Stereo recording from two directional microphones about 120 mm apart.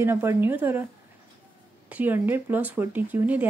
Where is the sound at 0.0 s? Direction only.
20° right (ahead or behind).